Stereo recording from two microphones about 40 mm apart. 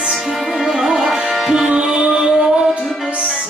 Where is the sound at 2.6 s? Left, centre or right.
Centre.